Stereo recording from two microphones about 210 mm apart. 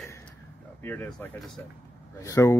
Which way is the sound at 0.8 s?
10° left (ahead or behind).